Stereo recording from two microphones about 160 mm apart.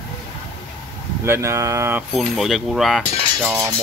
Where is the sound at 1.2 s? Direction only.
15° right (ahead or behind).